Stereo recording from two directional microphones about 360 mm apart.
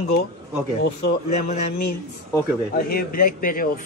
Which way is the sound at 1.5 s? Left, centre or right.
Left.